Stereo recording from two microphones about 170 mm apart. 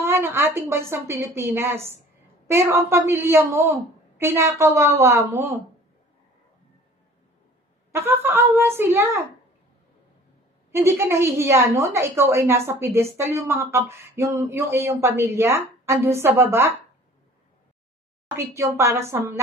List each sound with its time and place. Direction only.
0.0 s a woman's voice: 15° right (ahead or behind)
7.9 s a woman's voice: 15° right (ahead or behind)
10.7 s a woman's voice: 15° right (ahead or behind)
18.3 s a woman's voice: 15° right (ahead or behind)